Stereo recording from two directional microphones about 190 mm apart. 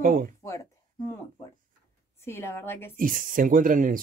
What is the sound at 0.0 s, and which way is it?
Speech, 45° right (ahead or behind).